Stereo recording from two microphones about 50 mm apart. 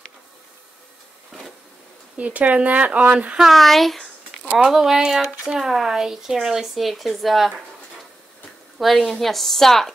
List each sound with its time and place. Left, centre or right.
2.1 s speech: right
3.5 s a sound: centre
4.6 s speech: centre
8.7 s a woman's voice: centre